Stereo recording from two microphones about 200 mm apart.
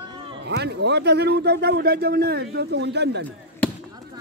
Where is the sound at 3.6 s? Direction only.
5° left (ahead or behind).